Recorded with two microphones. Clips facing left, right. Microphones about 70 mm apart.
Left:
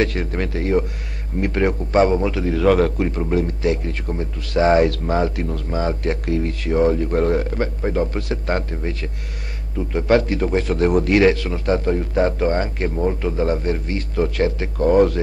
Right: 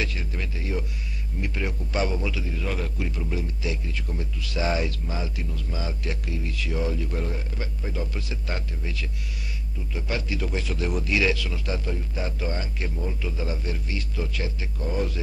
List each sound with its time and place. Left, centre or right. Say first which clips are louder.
0.0 s a man's voice: left 11 dB; left
2.4 s speech: left 15 dB; left
3.0 s a man's voice: left 11 dB; left
4.8 s a man's voice: left 13 dB; left
9.8 s a man's voice: left 15 dB; left